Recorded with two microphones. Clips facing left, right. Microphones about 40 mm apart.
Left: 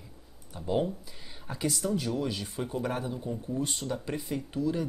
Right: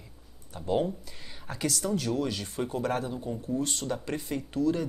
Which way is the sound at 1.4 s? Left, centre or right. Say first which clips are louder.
Even; right.